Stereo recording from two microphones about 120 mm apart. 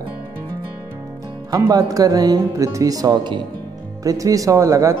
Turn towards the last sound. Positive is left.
turn(degrees=-25)  # may be behind; listen again after turning